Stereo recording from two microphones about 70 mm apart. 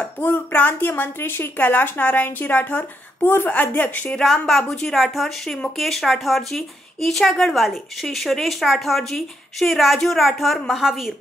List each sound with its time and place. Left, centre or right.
0.2 s a woman's voice: left
4.2 s speech: centre